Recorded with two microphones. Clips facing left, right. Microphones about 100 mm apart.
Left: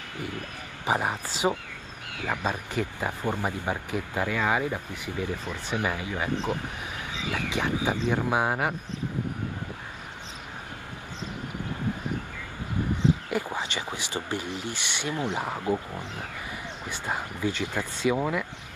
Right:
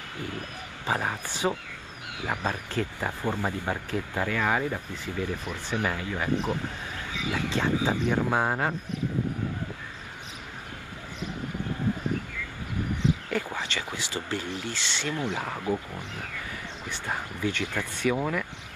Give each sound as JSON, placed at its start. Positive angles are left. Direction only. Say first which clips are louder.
{"t": 0.8, "sound": "speech", "louder": "left 2 dB", "side_deg": 15}
{"t": 13.3, "sound": "speech", "louder": "left 1 dB", "side_deg": 15}